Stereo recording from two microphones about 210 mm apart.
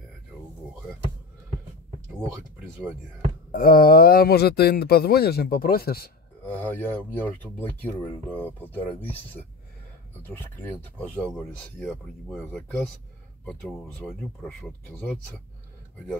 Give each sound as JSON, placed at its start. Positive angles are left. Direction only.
{"t": 3.5, "sound": "speech", "side_deg": 45}
{"t": 6.4, "sound": "speech", "side_deg": 10}